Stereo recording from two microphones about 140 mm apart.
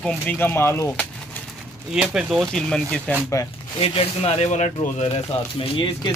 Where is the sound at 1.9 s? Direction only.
5° right (ahead or behind).